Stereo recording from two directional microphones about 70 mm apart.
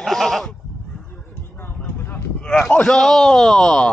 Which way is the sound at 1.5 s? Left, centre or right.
Left.